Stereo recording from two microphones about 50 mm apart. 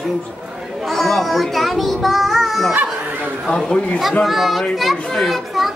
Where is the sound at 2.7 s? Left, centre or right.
Right.